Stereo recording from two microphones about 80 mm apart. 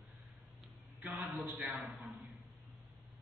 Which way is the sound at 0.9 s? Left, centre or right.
Right.